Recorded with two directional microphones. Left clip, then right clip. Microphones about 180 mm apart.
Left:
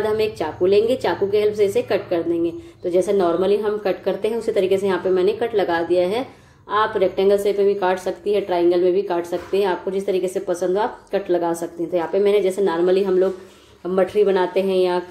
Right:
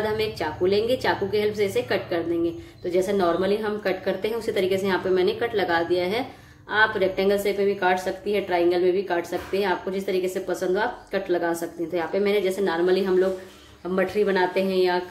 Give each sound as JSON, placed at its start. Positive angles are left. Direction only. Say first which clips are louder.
{"t": 0.0, "sound": "a woman's voice", "louder": "left 5 dB", "side_deg": 15}